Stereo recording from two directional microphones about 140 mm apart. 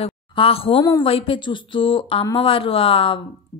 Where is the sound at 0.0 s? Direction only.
45° left (ahead or behind).